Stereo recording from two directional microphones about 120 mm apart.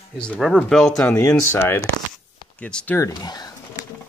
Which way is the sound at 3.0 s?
30° left (ahead or behind).